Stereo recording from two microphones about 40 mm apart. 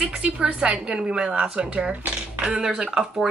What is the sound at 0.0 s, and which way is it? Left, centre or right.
A woman's voice, right.